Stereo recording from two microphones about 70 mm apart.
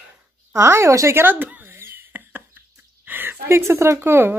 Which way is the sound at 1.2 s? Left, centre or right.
Right.